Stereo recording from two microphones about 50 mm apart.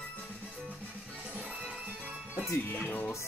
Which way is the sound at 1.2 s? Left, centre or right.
Right.